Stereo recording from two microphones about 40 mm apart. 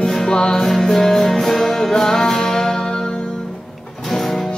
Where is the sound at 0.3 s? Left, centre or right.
Centre.